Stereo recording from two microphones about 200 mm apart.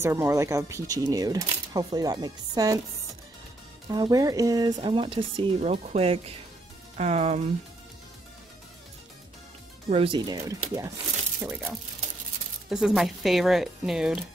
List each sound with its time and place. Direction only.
0.0 s speech: 10° right (ahead or behind)
3.9 s speech: 20° right (ahead or behind)
9.8 s speech: 25° right (ahead or behind); by 14.2 s 5° right (ahead or behind)